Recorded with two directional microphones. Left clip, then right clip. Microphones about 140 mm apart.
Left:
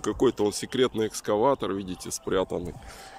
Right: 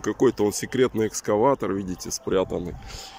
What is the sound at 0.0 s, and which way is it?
Speech, centre (ahead or behind).